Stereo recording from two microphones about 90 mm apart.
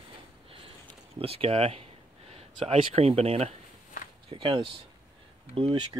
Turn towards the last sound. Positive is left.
turn(degrees=-85)